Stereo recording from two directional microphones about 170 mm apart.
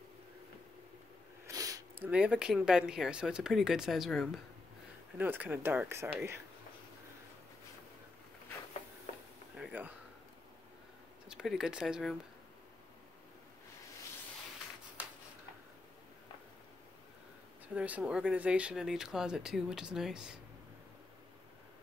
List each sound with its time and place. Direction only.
1.5 s sniff: 20° right (ahead or behind)
2.0 s speech: 5° right (ahead or behind)
5.1 s speech: 10° right (ahead or behind)
9.6 s a sound: 10° right (ahead or behind)
11.2 s speech: 5° right (ahead or behind)
17.7 s speech: 10° right (ahead or behind)